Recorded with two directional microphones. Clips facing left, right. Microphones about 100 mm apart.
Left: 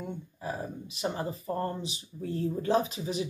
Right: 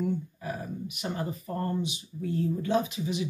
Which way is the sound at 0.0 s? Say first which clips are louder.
Right 6 dB; 30° left (ahead or behind).